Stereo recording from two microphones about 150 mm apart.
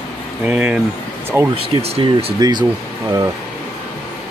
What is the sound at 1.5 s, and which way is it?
Speech, 40° right (ahead or behind).